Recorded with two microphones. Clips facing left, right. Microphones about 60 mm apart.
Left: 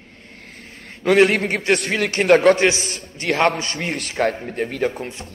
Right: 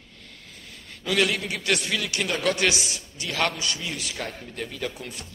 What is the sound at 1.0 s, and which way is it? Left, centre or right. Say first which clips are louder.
A man's voice: left 10 dB; left.